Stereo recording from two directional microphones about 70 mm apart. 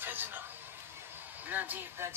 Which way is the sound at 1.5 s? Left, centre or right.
Right.